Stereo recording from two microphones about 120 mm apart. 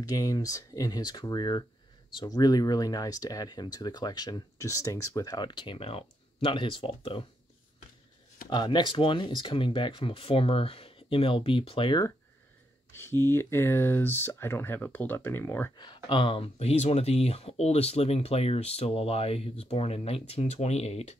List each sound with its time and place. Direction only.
0.1 s speech: 30° left (ahead or behind); by 7.2 s 50° left (ahead or behind)
8.5 s speech: 40° left (ahead or behind)
12.9 s speech: 20° left (ahead or behind)
15.8 s speech: 40° left (ahead or behind); by 21.2 s 65° left (ahead or behind)